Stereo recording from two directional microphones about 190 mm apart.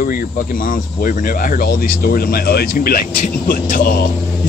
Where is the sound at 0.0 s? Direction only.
50° left (ahead or behind).